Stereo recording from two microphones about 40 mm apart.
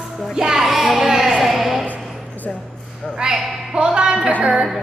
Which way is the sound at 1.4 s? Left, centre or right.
Centre.